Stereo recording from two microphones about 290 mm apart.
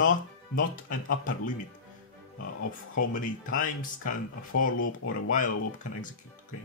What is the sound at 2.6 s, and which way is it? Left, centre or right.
Speech, left.